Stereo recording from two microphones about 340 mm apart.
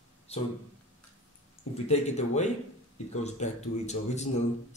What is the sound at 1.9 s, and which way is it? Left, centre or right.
Speech, centre.